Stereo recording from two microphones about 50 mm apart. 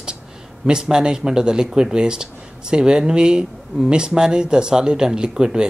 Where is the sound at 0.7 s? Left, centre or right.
Centre.